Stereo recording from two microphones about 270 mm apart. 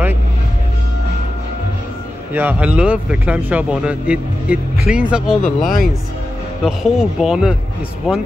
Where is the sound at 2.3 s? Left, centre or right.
Centre.